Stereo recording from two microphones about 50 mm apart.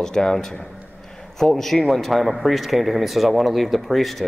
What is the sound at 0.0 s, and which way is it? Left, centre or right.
A man's voice, centre.